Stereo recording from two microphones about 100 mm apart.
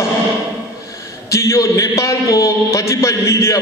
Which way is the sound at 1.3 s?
30° left (ahead or behind).